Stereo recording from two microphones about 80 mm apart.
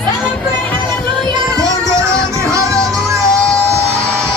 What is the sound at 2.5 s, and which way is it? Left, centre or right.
Music, right.